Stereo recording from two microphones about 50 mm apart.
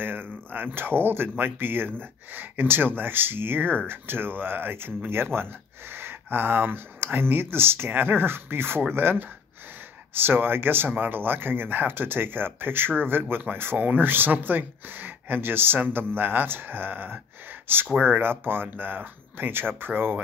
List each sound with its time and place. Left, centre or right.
0.0 s speech: right